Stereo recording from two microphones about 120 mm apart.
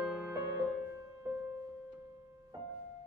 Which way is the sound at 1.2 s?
15° right (ahead or behind).